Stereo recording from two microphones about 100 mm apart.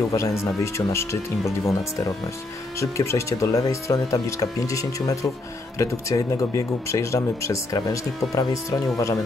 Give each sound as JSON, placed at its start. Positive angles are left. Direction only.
{"t": 0.1, "sound": "speech", "side_deg": 30}
{"t": 2.8, "sound": "speech", "side_deg": 30}